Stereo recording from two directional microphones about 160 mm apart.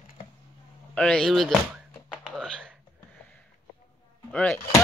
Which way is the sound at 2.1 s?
5° right (ahead or behind).